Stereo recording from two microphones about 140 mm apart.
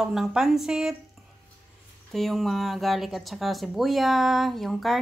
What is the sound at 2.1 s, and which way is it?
Speech, centre (ahead or behind).